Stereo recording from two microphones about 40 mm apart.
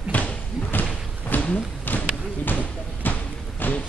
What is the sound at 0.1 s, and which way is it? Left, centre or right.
Slam, left.